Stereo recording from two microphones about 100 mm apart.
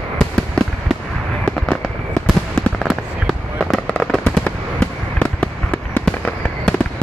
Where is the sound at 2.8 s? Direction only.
Centre (ahead or behind).